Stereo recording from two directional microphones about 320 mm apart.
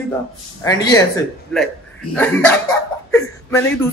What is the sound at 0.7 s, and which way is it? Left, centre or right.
Speech, centre.